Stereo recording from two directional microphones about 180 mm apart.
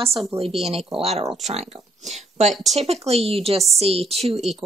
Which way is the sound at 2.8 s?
35° right (ahead or behind).